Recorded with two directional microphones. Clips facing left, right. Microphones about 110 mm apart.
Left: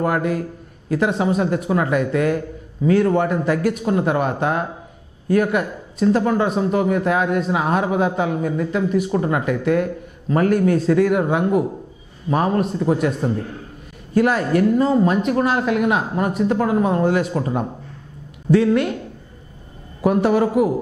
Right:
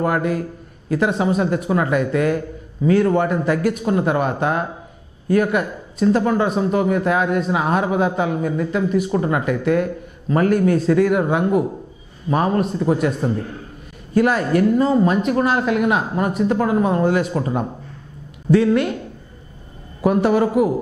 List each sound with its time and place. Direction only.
0.0 s speech: 15° right (ahead or behind)
20.0 s speech: 15° right (ahead or behind)